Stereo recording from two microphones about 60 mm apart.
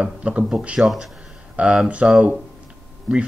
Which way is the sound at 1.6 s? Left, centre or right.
Right.